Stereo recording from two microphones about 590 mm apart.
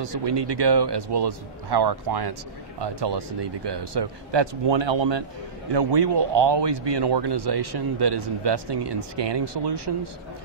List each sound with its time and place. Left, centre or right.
0.0 s a man's voice: right